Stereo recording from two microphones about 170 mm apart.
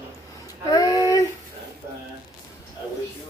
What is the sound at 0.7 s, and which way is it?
Child singing, 20° left (ahead or behind).